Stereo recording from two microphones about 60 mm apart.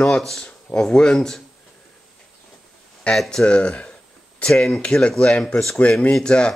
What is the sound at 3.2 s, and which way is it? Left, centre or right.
Speech, centre.